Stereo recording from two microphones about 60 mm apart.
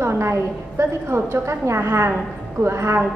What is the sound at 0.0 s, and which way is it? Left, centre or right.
A woman's voice, right.